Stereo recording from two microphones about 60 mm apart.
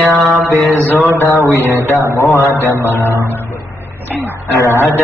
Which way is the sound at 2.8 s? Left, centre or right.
Left.